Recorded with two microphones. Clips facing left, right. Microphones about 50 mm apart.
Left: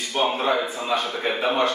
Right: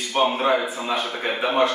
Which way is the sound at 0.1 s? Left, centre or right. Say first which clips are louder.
Right 2 dB; right.